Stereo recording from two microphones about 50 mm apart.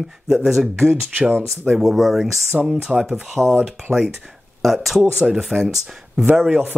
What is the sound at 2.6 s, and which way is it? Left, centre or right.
Speech, centre.